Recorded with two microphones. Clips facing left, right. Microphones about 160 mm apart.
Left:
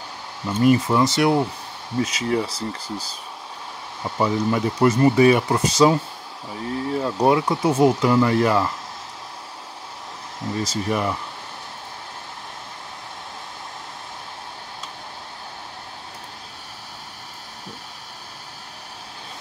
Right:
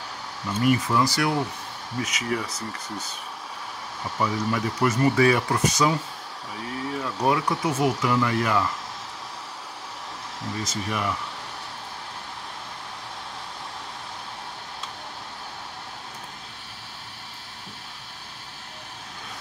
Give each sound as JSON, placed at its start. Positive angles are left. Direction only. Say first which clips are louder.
{"t": 0.5, "sound": "speech", "louder": "left 5 dB", "side_deg": 30}
{"t": 4.2, "sound": "speech", "louder": "left 5 dB", "side_deg": 25}
{"t": 10.6, "sound": "speech", "louder": "left 6 dB", "side_deg": 35}